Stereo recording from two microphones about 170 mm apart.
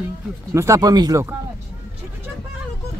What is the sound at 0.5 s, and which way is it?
Speech, 15° right (ahead or behind).